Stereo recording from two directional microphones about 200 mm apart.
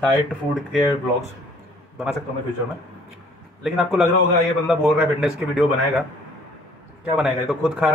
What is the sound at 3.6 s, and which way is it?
A man's voice, centre (ahead or behind).